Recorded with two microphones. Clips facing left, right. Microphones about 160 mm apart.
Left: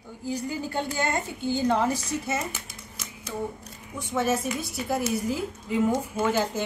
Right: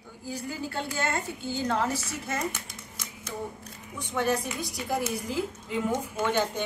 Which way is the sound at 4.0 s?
5° left (ahead or behind).